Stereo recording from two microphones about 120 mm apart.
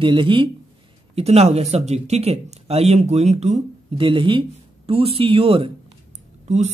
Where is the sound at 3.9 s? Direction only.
45° right (ahead or behind).